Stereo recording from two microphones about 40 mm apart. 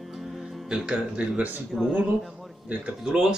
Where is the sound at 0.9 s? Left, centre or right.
Right.